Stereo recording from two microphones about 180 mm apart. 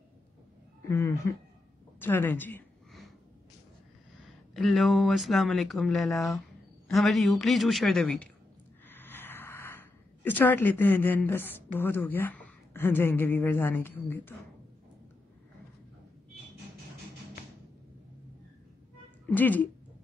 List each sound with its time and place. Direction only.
0.8 s a woman's voice: 15° left (ahead or behind)
4.6 s speech: centre (ahead or behind)
19.2 s a woman's voice: 10° left (ahead or behind)